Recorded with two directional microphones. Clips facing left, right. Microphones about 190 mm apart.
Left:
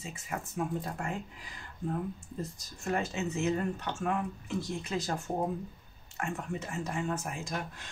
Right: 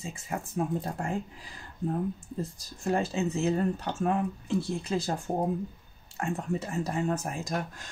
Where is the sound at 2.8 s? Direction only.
30° right (ahead or behind).